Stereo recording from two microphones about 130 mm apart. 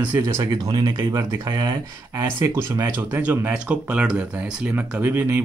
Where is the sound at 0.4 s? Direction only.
35° right (ahead or behind).